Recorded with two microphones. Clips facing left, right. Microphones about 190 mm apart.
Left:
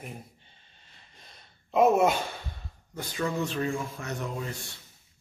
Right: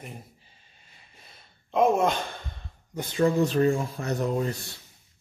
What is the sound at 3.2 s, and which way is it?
Speech, 35° right (ahead or behind).